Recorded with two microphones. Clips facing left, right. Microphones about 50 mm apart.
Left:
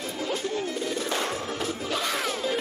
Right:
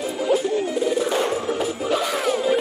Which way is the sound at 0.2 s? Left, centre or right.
Centre.